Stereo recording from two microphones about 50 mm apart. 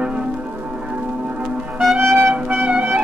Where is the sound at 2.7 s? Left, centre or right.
Right.